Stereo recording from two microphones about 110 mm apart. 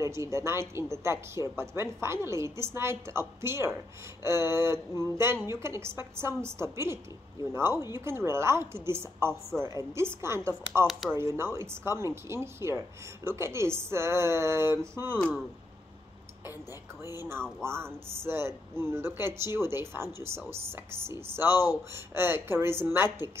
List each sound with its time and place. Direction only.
0.0 s speech: 25° right (ahead or behind)
10.9 s speech: centre (ahead or behind)
11.1 s speech: 25° right (ahead or behind)
17.6 s speech: 20° right (ahead or behind)